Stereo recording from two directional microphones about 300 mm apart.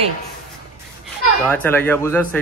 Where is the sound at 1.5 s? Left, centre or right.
Centre.